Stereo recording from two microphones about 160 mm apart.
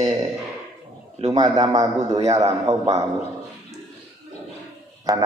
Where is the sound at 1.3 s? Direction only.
25° right (ahead or behind).